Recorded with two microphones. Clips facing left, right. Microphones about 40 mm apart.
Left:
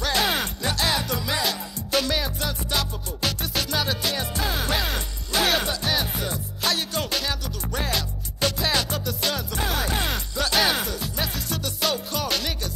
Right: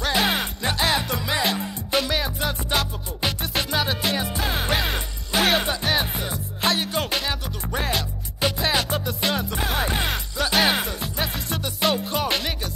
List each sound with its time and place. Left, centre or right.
0.0 s music: centre